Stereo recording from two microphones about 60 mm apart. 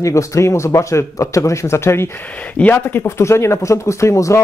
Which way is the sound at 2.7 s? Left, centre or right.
Left.